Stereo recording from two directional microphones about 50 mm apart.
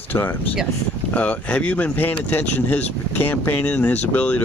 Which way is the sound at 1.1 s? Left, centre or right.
Left.